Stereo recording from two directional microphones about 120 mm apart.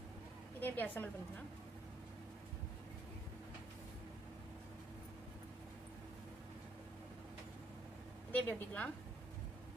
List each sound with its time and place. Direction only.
0.6 s a woman's voice: 15° left (ahead or behind)
8.3 s a woman's voice: 15° left (ahead or behind)